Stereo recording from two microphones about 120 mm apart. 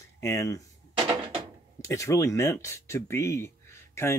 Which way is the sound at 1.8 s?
25° left (ahead or behind).